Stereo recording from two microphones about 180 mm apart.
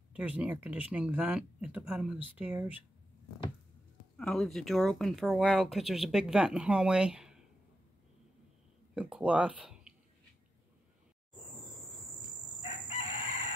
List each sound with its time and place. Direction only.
0.1 s speech: 5° right (ahead or behind)
4.2 s speech: centre (ahead or behind)
8.9 s speech: 5° right (ahead or behind)
12.9 s chicken: 40° left (ahead or behind)